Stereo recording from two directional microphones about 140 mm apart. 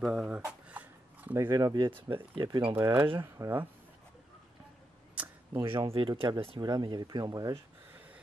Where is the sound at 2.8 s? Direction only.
15° right (ahead or behind).